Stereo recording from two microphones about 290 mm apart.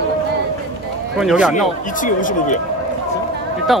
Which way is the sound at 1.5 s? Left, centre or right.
Left.